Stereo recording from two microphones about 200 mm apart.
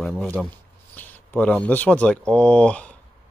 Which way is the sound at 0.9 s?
10° left (ahead or behind).